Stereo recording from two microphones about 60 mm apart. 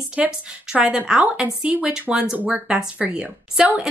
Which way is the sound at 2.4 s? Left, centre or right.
Right.